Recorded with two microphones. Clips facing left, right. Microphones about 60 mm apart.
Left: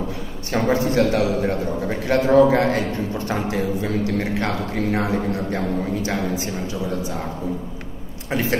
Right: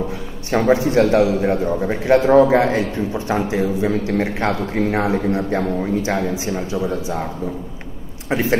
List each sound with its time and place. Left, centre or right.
0.5 s a man's voice: centre
8.3 s a man's voice: right